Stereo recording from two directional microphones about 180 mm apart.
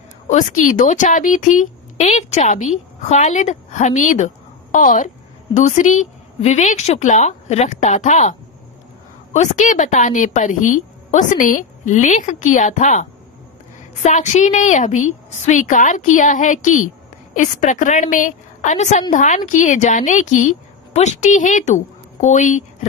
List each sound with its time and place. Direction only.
0.3 s a woman's voice: 40° left (ahead or behind)
14.0 s a woman's voice: 40° left (ahead or behind)